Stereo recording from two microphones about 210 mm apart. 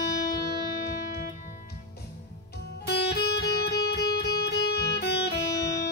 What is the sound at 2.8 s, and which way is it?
Music, 50° left (ahead or behind).